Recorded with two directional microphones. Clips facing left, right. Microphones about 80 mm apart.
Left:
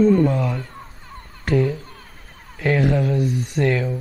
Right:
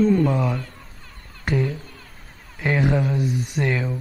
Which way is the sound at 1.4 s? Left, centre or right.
Centre.